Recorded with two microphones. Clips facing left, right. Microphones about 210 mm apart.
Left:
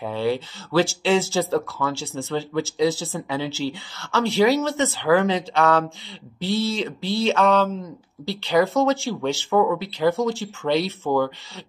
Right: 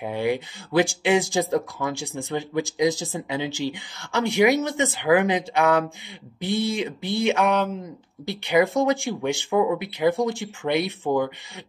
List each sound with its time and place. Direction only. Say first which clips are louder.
0.0 s speech: left 1 dB; 15° right (ahead or behind)